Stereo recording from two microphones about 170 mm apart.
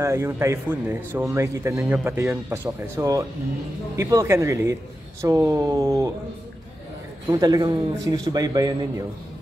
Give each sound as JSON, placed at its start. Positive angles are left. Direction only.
{"t": 0.0, "sound": "speech", "side_deg": -15}
{"t": 7.2, "sound": "speech", "side_deg": -20}